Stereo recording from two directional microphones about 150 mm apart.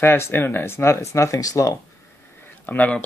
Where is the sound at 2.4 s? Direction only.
10° left (ahead or behind).